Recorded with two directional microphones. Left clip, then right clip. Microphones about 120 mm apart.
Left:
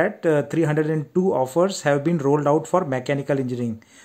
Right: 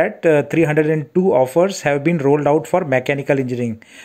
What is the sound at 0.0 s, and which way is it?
Speech, 10° right (ahead or behind).